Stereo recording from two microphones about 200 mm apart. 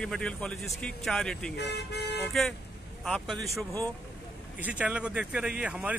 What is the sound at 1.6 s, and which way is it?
Speech, 55° left (ahead or behind).